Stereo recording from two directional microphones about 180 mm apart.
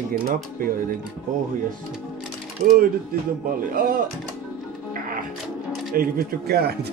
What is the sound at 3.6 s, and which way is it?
Speech, 55° right (ahead or behind).